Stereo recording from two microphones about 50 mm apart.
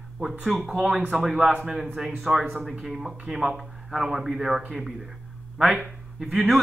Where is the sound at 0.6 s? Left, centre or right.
Right.